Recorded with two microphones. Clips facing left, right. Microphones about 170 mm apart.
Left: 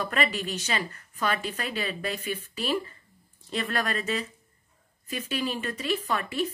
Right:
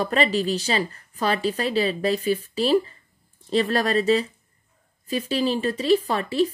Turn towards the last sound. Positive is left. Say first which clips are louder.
# right 6 dB
turn(degrees=-30)  # may be behind; listen again after turning